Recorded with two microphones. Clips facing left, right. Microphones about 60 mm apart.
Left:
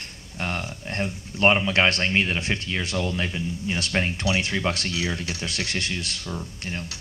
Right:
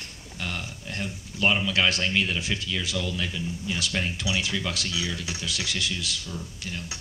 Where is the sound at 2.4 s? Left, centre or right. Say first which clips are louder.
Left 3 dB; left.